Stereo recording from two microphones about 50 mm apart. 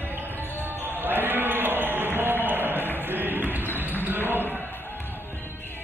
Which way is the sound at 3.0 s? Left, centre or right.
Right.